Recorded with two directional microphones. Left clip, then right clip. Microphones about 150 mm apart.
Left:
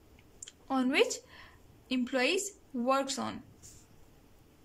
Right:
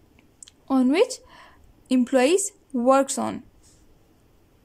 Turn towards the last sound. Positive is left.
turn(degrees=-45)  # may be behind; listen again after turning